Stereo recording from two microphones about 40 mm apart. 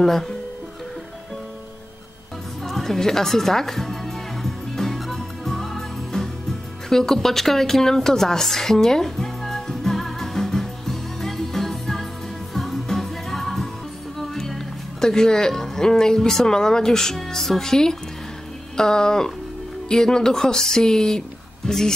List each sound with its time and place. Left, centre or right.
0.0 s speech: centre
2.6 s music: centre
6.9 s a sound: centre
12.5 s music: centre
14.1 s speech: centre